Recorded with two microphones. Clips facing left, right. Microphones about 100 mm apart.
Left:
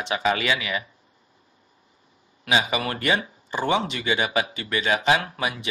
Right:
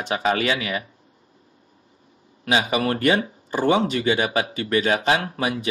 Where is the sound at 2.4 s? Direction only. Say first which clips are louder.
Right 3 dB; 50° right (ahead or behind).